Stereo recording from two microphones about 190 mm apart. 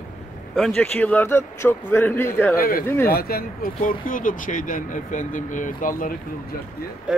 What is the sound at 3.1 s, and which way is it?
Speech, 50° left (ahead or behind).